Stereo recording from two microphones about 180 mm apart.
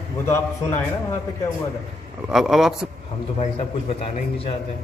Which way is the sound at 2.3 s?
Centre (ahead or behind).